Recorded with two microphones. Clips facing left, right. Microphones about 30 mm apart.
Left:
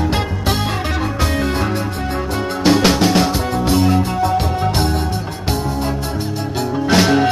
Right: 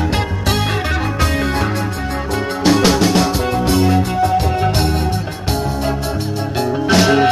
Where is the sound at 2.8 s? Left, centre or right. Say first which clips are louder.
Even; centre.